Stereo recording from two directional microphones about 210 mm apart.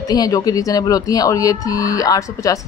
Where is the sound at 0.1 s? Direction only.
15° left (ahead or behind).